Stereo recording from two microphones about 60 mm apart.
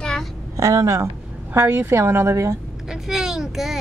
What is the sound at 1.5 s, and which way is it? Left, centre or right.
A woman's voice, right.